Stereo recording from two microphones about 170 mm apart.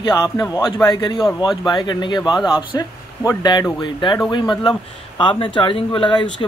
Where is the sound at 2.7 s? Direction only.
20° left (ahead or behind).